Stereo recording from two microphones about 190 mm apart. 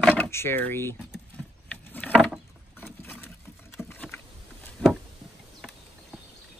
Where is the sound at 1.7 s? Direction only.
5° left (ahead or behind).